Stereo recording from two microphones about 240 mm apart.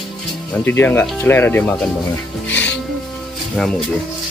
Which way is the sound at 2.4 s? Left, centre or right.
Centre.